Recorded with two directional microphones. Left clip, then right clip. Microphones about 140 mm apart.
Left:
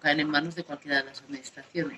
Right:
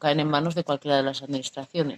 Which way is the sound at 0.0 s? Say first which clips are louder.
Right 2 dB; 70° right (ahead or behind).